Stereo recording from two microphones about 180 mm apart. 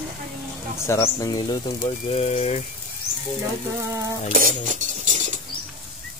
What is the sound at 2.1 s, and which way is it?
Speech, 35° left (ahead or behind).